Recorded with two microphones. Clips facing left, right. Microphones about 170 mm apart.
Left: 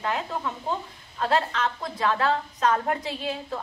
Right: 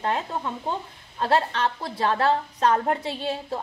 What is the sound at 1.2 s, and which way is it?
A woman's voice, 30° right (ahead or behind).